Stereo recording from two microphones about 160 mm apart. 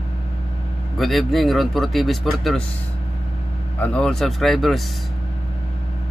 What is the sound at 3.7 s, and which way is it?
Speech, 10° left (ahead or behind).